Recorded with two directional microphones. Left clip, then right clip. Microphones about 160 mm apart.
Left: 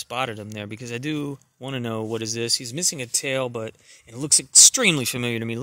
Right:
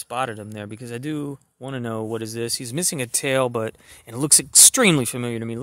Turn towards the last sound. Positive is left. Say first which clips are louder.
# left 1 dB
turn(degrees=5)  # may be behind; listen again after turning